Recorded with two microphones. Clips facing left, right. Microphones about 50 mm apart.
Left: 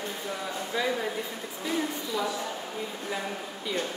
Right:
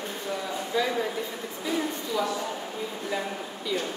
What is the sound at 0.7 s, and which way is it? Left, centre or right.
Speech, centre.